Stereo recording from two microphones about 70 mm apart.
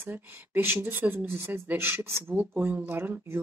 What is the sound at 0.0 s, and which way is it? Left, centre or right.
Speech, right.